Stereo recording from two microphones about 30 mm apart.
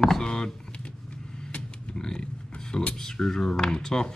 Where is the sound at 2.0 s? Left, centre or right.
Left.